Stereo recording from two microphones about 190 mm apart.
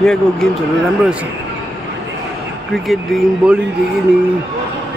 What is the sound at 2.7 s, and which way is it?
Speech, centre (ahead or behind).